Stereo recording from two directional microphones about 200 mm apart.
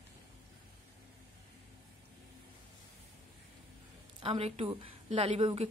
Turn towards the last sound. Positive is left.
turn(degrees=-30)  # may be behind; listen again after turning